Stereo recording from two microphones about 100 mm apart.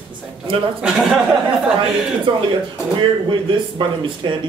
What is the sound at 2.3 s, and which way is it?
Speech, 55° right (ahead or behind).